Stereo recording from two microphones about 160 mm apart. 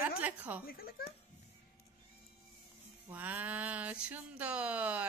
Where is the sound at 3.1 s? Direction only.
10° right (ahead or behind).